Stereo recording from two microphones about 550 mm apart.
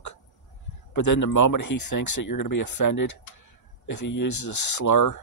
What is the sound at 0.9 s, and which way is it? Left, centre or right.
Speech, left.